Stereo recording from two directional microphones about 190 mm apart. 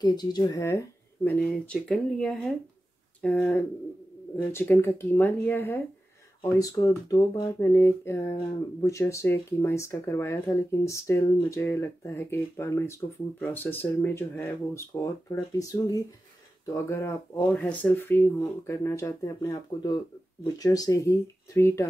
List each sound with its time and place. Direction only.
0.0 s speech: 20° left (ahead or behind)